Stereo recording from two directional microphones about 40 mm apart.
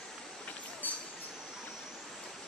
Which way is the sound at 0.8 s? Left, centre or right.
Left.